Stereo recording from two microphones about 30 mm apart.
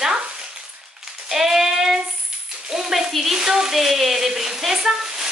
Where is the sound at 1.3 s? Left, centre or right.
Centre.